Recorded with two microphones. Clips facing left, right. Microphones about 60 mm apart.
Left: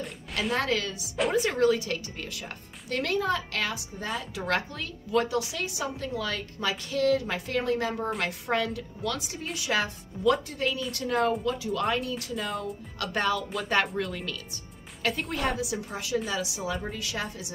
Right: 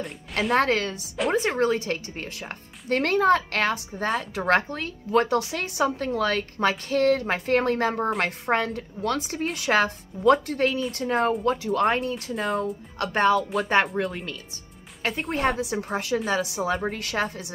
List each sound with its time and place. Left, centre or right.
0.4 s a woman's voice: right
10.9 s a woman's voice: right
11.4 s a woman's voice: right
12.4 s speech: right
13.0 s a woman's voice: right